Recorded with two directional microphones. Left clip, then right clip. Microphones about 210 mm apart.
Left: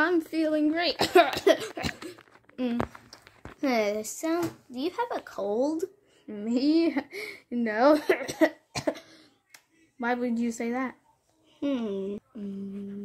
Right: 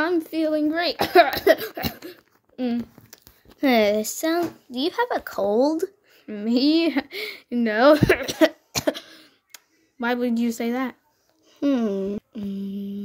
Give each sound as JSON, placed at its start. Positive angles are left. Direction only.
{"t": 0.0, "sound": "speech", "side_deg": -10}
{"t": 3.6, "sound": "speech", "side_deg": -30}